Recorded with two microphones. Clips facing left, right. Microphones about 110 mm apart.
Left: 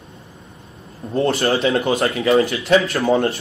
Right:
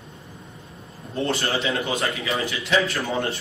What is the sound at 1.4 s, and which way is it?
A man's voice, 55° left (ahead or behind).